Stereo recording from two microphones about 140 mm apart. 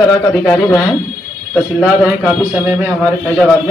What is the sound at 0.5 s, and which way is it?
Speech, 15° left (ahead or behind).